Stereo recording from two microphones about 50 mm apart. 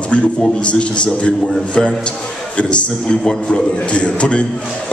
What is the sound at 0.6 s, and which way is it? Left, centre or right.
A man's voice, left.